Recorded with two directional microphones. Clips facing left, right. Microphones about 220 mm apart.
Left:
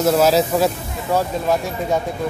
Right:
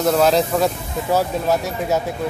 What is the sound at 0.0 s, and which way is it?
Speech, 5° left (ahead or behind).